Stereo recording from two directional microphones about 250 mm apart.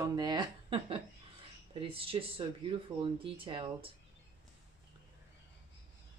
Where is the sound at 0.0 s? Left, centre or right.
Centre.